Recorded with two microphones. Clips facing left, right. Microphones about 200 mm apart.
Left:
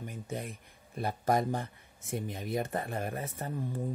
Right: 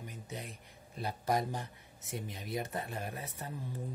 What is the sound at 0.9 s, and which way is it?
Speech, 50° left (ahead or behind).